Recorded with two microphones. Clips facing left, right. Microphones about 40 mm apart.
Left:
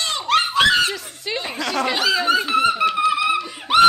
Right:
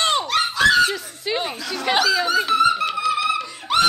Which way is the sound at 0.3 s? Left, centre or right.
Left.